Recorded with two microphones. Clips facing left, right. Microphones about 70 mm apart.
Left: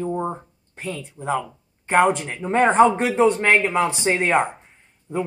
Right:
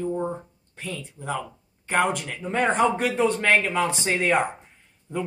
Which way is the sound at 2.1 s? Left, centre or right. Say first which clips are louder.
Left 5 dB; left.